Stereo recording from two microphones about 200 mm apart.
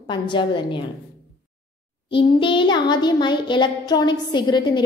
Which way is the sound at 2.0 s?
25° left (ahead or behind).